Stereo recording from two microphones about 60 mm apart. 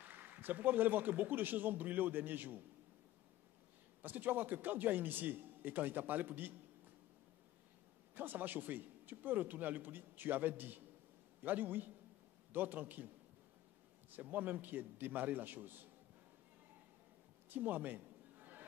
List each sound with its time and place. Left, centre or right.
0.0 s a man's voice: right
4.0 s a man's voice: right
8.1 s a man's voice: right
14.1 s a man's voice: right
17.5 s a sound: right